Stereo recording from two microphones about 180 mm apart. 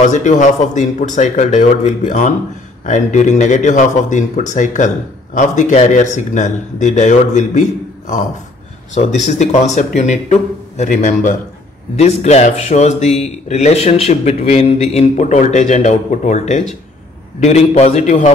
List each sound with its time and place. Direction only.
0.0 s a man's voice: 45° left (ahead or behind)
8.9 s a man's voice: 40° left (ahead or behind)